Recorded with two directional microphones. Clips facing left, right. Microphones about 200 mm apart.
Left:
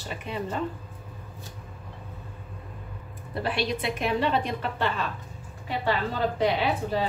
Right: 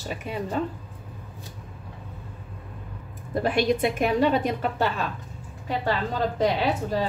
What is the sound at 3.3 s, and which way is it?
A woman's voice, 45° right (ahead or behind).